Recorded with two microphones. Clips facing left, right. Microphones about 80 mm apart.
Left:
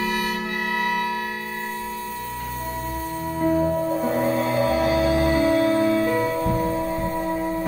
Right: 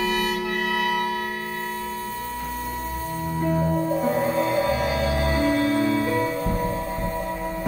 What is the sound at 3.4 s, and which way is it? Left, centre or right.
Music, centre.